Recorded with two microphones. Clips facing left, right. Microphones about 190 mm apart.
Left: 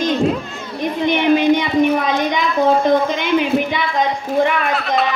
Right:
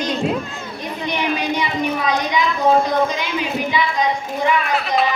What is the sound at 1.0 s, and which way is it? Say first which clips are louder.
A woman's voice: left 8 dB; 55° left (ahead or behind).